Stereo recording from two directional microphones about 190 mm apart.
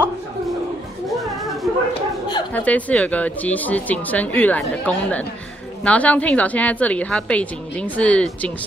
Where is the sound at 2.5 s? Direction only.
10° left (ahead or behind).